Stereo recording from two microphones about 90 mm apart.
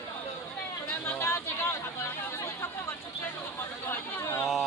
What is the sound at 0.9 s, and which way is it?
Chatter, 25° left (ahead or behind).